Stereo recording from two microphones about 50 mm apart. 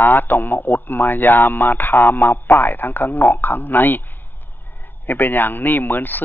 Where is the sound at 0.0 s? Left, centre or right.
Left.